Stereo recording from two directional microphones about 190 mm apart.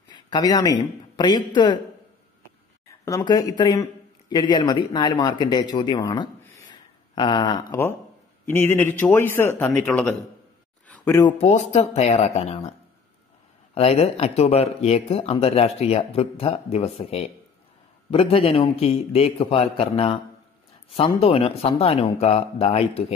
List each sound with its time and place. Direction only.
0.1 s speech: 20° left (ahead or behind)
2.9 s speech: 15° left (ahead or behind)
6.7 s a sound: 25° left (ahead or behind)
8.5 s speech: 10° left (ahead or behind)
11.1 s speech: 20° left (ahead or behind)
11.3 s speech: 35° left (ahead or behind)
13.7 s speech: 30° left (ahead or behind)